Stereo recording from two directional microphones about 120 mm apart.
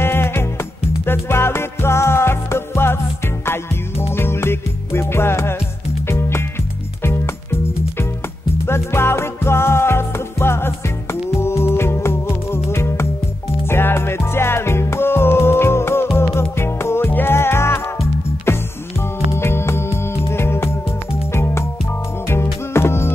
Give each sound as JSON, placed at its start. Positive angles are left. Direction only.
{"t": 0.0, "sound": "music", "side_deg": 20}
{"t": 4.1, "sound": "music", "side_deg": 20}
{"t": 8.6, "sound": "music", "side_deg": 20}